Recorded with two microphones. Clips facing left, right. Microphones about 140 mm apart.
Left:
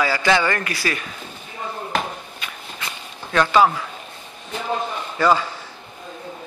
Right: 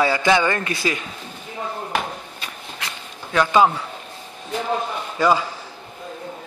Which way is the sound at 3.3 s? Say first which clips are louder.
Even; 20° right (ahead or behind).